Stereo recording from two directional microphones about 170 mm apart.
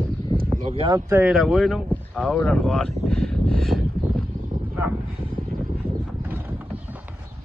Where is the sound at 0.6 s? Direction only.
40° right (ahead or behind).